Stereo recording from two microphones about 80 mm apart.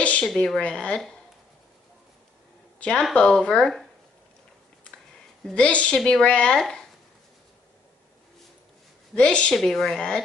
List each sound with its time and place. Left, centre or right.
0.0 s a sound: centre
0.6 s speech: centre
2.8 s speech: centre
5.4 s speech: centre
9.1 s speech: centre